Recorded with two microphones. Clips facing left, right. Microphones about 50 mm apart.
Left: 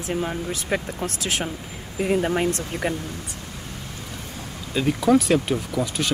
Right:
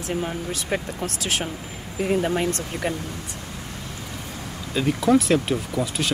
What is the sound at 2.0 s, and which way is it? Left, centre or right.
Speech, centre.